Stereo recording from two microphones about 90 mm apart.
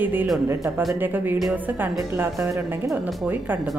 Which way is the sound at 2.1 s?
30° right (ahead or behind).